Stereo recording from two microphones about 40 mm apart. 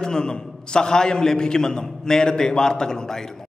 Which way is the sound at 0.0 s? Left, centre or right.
Centre.